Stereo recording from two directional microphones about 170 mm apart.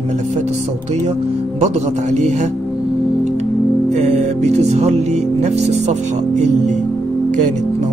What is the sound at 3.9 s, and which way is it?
Music, 40° right (ahead or behind).